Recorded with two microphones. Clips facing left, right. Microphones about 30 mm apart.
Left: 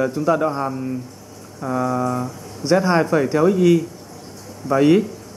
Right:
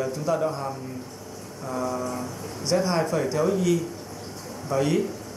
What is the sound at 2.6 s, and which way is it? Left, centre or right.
A man's voice, left.